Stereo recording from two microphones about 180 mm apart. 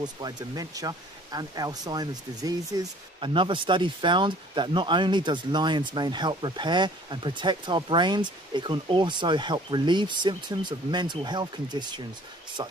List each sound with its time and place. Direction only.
0.0 s speech: 20° right (ahead or behind)